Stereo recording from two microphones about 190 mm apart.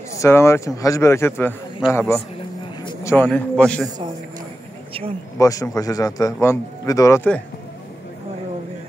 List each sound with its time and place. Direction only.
0.2 s a man's voice: 15° left (ahead or behind)
2.8 s a sound: 25° left (ahead or behind)
3.1 s a man's voice: 10° left (ahead or behind)
5.4 s a man's voice: 20° left (ahead or behind)